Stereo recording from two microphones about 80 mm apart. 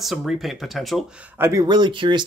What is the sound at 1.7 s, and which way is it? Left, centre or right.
Speech, right.